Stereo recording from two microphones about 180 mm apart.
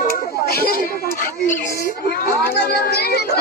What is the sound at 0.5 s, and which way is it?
Speech, 55° left (ahead or behind).